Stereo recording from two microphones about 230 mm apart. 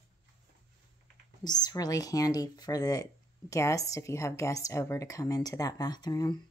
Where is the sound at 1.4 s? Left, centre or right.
Centre.